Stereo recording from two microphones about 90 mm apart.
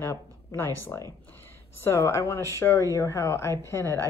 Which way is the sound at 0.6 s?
25° left (ahead or behind).